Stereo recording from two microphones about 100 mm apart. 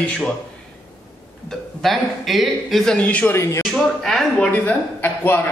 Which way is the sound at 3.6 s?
5° left (ahead or behind).